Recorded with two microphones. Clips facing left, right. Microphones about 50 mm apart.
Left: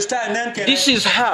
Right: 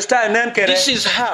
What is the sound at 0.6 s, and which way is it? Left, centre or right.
Speech, centre.